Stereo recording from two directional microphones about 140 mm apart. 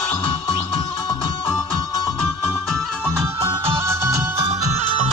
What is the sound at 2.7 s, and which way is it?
Music, 5° left (ahead or behind).